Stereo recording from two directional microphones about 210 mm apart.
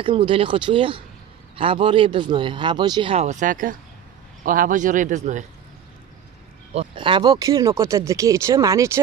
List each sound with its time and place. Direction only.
0.0 s speech: 25° right (ahead or behind)
6.7 s speech: 25° right (ahead or behind)